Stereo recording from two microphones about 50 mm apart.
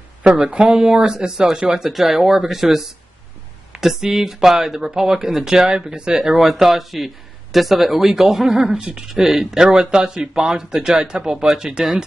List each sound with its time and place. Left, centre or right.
0.2 s speech: right